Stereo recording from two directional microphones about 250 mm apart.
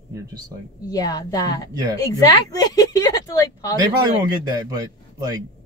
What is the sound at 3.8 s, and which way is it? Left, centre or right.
A man's voice, centre.